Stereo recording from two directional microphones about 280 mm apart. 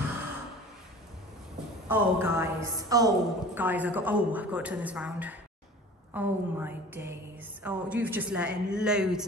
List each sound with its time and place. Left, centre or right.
1.9 s a woman's voice: centre
6.1 s a sound: centre
7.6 s a woman's voice: centre